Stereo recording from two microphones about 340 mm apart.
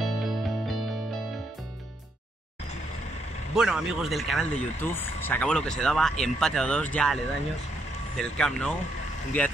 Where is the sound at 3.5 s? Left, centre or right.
Centre.